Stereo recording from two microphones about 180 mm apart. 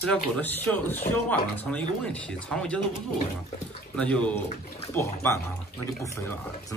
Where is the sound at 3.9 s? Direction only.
5° left (ahead or behind).